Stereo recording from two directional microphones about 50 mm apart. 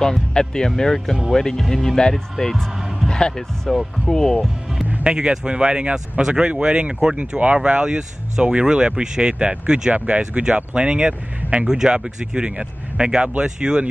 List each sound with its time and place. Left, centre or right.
0.0 s speech: centre
3.1 s speech: centre
5.0 s speech: centre